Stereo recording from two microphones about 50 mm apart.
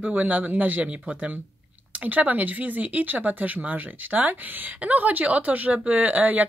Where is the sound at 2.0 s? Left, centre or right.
Right.